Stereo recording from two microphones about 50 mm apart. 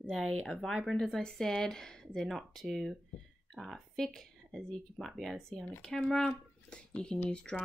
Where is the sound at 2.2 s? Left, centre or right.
Centre.